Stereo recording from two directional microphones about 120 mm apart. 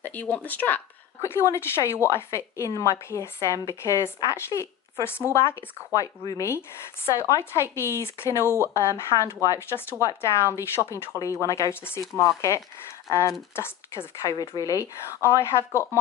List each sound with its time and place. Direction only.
0.0 s speech: 15° left (ahead or behind)